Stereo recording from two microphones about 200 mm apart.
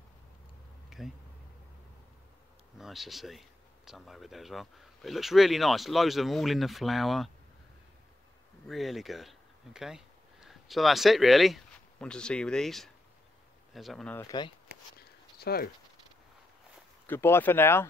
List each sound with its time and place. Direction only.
0.8 s insect: centre (ahead or behind)
2.8 s speech: centre (ahead or behind)
8.6 s speech: centre (ahead or behind)
14.2 s speech: 20° left (ahead or behind)
15.0 s a sound: 50° left (ahead or behind)
17.0 s speech: 10° left (ahead or behind)